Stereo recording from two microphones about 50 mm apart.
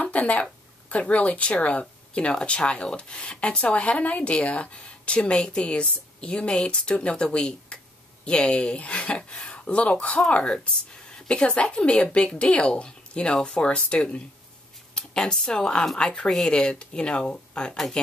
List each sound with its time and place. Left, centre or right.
0.0 s speech: left; by 18.0 s centre